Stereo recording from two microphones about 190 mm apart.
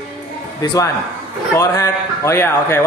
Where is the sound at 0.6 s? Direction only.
20° left (ahead or behind).